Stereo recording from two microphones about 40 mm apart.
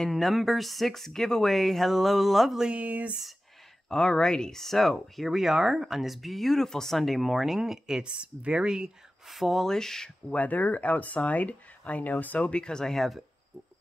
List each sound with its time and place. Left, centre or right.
0.1 s speech: centre
2.7 s speech: right
3.9 s speech: centre
8.0 s speech: right
9.3 s speech: centre
9.7 s speech: centre
10.3 s speech: left
12.4 s speech: left; by 13.2 s centre